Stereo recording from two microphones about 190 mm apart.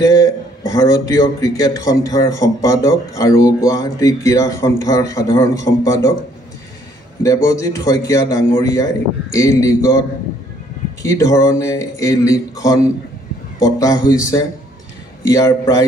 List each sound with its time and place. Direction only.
0.0 s a man's voice: 15° left (ahead or behind)
7.2 s a man's voice: 15° left (ahead or behind)
15.2 s a man's voice: 20° left (ahead or behind)